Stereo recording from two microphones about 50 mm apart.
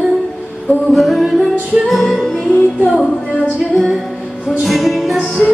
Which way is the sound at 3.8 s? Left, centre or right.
Centre.